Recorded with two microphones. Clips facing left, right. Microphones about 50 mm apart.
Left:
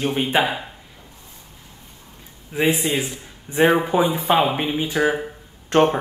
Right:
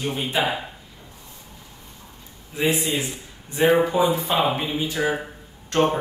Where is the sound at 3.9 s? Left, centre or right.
Left.